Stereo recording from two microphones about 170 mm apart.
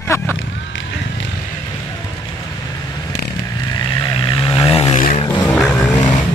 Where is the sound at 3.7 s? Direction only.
30° left (ahead or behind).